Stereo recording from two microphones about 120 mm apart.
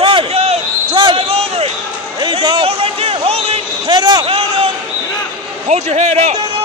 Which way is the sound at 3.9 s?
40° right (ahead or behind).